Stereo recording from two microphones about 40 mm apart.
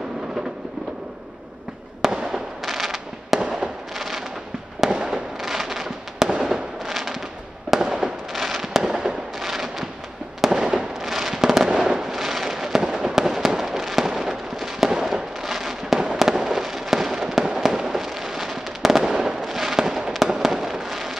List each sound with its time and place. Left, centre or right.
2.0 s fireworks: centre
7.8 s fireworks: centre